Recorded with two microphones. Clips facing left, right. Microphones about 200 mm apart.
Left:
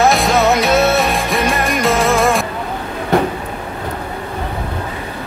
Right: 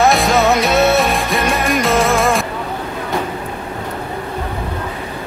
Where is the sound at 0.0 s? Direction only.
Centre (ahead or behind).